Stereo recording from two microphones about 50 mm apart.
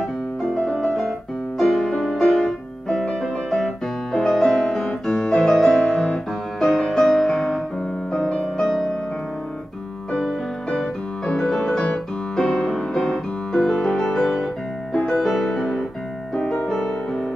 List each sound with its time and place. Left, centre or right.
0.0 s piano: centre
1.6 s music: centre
4.1 s piano: centre
8.1 s music: centre
10.1 s music: centre